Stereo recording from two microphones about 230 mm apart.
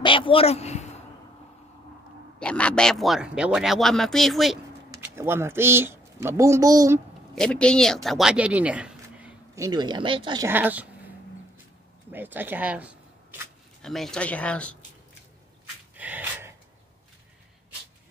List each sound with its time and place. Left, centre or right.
0.0 s speech: left
2.3 s speech: centre
4.9 s speech: centre
7.3 s speech: centre
9.7 s speech: centre
12.1 s speech: centre
16.0 s gasp: centre